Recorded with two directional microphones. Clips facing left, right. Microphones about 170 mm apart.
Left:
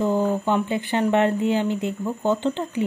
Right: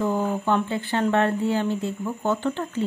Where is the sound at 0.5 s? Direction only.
15° left (ahead or behind).